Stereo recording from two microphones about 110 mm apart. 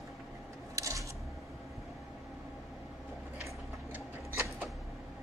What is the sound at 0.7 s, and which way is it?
Scissors, 30° right (ahead or behind).